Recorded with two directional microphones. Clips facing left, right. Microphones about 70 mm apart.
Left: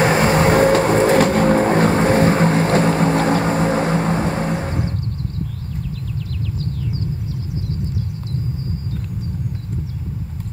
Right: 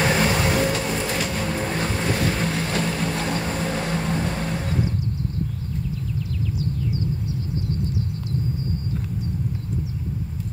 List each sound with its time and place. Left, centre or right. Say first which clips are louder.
0.0 s vehicle: left 6 dB; left